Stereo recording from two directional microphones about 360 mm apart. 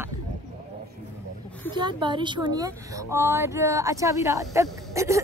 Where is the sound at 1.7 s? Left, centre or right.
Centre.